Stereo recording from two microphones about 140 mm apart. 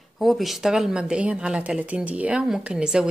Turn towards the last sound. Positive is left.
turn(degrees=-5)  # may be behind; listen again after turning